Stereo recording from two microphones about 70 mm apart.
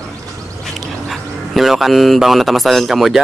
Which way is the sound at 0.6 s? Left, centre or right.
Centre.